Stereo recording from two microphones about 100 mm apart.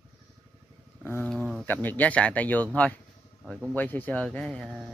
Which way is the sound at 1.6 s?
20° left (ahead or behind).